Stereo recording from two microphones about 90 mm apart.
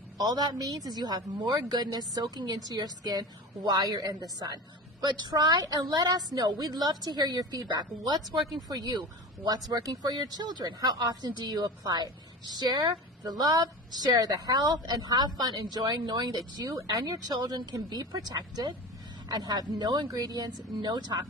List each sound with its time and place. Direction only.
0.2 s a woman's voice: 50° right (ahead or behind)
8.4 s speech: centre (ahead or behind)
8.6 s a woman's voice: 45° right (ahead or behind)